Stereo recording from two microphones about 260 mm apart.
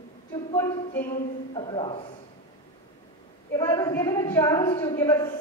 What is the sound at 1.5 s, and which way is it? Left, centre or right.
Speech, centre.